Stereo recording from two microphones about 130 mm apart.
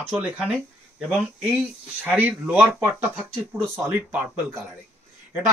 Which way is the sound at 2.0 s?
10° right (ahead or behind).